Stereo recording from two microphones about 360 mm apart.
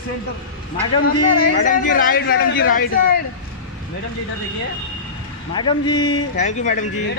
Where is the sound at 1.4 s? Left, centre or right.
Left.